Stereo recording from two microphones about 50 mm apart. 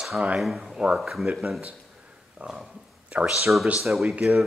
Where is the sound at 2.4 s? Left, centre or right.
Right.